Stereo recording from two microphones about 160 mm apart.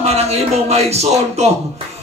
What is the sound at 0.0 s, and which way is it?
A man's voice, 40° right (ahead or behind).